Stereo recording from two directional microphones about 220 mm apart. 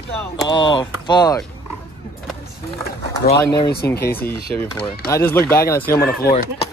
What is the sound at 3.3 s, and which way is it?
Speech, 20° left (ahead or behind).